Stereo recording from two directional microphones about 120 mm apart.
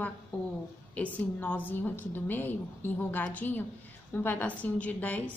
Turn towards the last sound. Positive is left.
turn(degrees=10)  # may be behind; listen again after turning